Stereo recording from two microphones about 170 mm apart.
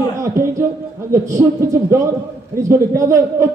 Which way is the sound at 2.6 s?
15° right (ahead or behind).